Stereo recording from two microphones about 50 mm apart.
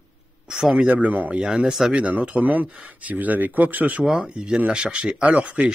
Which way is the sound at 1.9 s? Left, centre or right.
Right.